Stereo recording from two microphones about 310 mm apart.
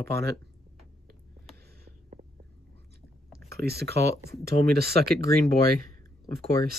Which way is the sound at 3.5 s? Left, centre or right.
Right.